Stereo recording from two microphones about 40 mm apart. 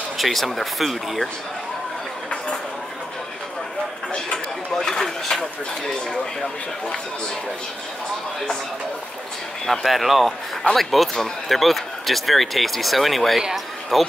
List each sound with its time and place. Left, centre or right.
0.2 s speech: centre
4.7 s a sound: centre
5.3 s speech: centre
9.8 s speech: centre